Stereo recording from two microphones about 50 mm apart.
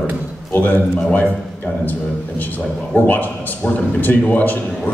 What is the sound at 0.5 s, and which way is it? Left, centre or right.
Speech, left.